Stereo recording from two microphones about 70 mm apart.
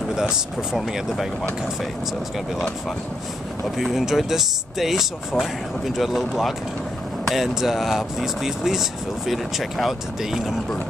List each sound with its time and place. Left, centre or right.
0.1 s speech: centre
3.7 s speech: centre